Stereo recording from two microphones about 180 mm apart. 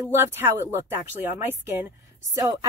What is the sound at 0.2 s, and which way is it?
Speech, 15° right (ahead or behind).